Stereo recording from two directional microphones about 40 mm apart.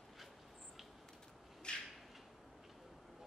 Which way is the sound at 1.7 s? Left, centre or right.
Left.